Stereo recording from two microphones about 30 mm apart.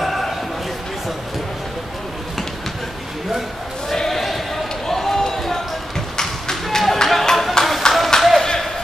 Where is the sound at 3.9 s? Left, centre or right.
Centre.